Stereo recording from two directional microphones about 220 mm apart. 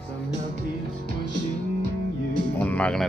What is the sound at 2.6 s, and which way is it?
Music, 5° left (ahead or behind).